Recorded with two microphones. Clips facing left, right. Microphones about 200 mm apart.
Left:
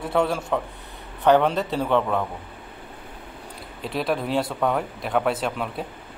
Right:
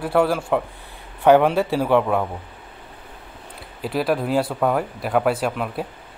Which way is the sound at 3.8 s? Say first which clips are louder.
Right 4 dB; 5° right (ahead or behind).